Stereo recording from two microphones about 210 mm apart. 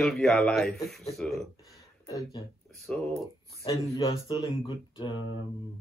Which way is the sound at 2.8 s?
5° left (ahead or behind).